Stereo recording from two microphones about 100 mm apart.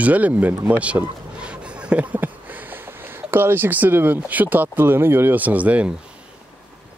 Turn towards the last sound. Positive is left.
turn(degrees=-15)  # may be behind; listen again after turning